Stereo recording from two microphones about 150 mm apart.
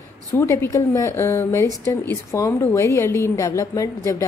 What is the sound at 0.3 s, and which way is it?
A woman's voice, 15° left (ahead or behind).